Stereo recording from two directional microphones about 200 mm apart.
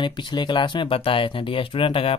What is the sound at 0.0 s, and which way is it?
Speech, 20° left (ahead or behind).